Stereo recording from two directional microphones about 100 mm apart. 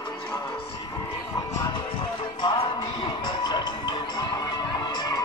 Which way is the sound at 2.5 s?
50° left (ahead or behind).